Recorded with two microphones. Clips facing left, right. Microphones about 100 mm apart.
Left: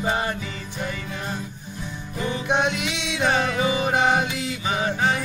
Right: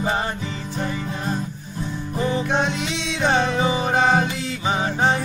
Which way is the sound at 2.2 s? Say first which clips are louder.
Right 5 dB; 30° right (ahead or behind).